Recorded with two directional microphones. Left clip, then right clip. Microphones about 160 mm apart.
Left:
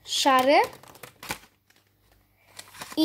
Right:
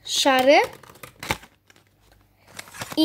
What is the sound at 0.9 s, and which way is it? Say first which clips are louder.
Typewriter: right 1 dB; 70° left (ahead or behind).